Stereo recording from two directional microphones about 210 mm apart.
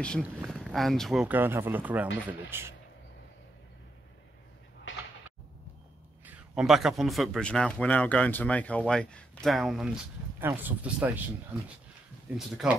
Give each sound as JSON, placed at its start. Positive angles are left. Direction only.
{"t": 0.2, "sound": "speech", "side_deg": -5}
{"t": 4.9, "sound": "a sound", "side_deg": 65}
{"t": 6.2, "sound": "speech", "side_deg": -5}